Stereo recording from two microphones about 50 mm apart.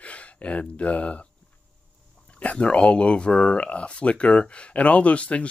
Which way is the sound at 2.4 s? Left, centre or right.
Left.